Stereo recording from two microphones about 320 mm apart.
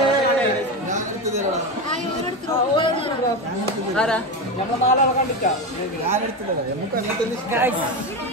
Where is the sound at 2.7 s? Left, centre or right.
Centre.